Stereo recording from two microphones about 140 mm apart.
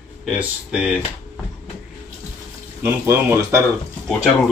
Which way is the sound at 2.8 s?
20° right (ahead or behind).